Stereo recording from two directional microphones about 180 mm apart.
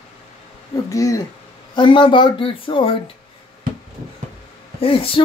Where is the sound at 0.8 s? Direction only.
20° left (ahead or behind).